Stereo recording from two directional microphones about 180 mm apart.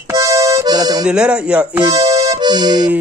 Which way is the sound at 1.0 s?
5° right (ahead or behind).